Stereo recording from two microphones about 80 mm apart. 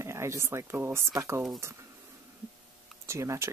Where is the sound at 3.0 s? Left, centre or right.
Right.